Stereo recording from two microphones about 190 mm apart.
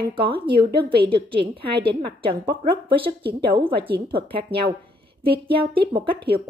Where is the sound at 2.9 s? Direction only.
25° right (ahead or behind).